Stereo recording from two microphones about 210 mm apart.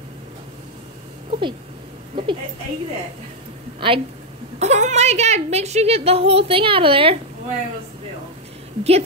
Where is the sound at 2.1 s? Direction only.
20° right (ahead or behind).